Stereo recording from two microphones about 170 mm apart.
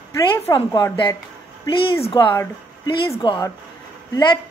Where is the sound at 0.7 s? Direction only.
25° left (ahead or behind).